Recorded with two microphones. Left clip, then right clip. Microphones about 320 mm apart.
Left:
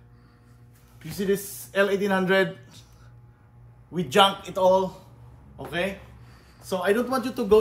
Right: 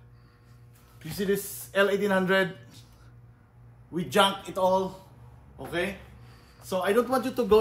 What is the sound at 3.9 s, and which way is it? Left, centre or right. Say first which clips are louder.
A man's voice: left 4 dB; centre.